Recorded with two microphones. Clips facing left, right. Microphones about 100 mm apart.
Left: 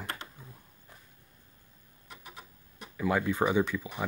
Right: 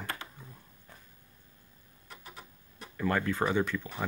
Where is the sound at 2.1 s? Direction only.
15° left (ahead or behind).